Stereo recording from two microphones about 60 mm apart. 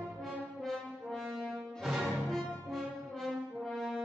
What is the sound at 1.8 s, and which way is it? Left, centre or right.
Music, centre.